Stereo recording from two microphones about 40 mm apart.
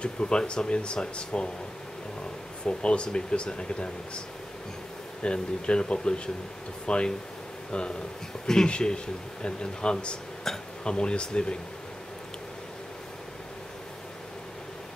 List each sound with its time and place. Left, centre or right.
0.0 s speech: left
2.6 s speech: left
5.2 s speech: left
8.6 s speech: left
10.5 s speech: centre
10.8 s speech: left